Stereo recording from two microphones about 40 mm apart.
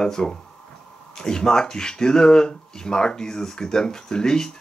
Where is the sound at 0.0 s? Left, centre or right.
Centre.